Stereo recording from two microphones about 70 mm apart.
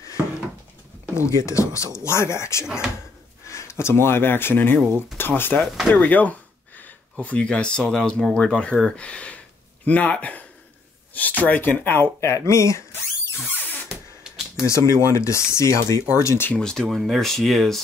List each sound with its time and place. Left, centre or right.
1.1 s speech: left
2.6 s speech: centre
3.4 s speech: left
13.8 s a sound: centre
14.7 s speech: left
16.5 s speech: centre